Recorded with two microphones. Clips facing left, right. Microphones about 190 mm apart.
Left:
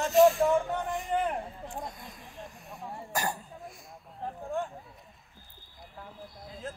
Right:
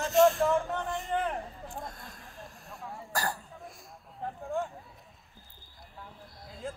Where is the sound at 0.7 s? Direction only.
15° left (ahead or behind).